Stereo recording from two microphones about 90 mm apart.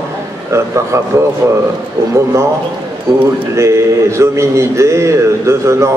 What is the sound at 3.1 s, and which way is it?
A man's voice, 40° right (ahead or behind).